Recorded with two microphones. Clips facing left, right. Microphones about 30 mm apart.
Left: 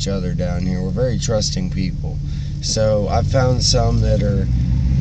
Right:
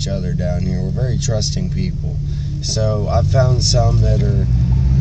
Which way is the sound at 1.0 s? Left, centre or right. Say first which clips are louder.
Left 5 dB; left.